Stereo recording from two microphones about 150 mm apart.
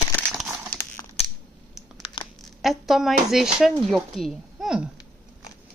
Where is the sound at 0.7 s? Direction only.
75° left (ahead or behind).